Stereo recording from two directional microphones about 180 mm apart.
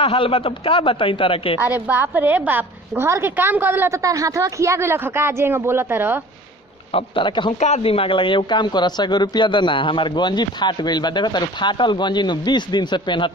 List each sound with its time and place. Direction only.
0.0 s speech: 30° left (ahead or behind)
1.6 s a woman's voice: 10° right (ahead or behind)
6.9 s speech: 30° left (ahead or behind)